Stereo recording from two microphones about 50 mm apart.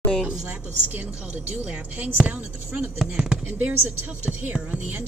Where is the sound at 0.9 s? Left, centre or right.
Right.